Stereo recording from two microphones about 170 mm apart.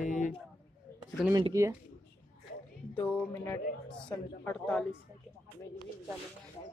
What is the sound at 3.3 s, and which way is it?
Speech, 15° left (ahead or behind).